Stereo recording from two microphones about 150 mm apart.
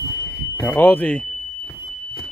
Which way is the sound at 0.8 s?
10° left (ahead or behind).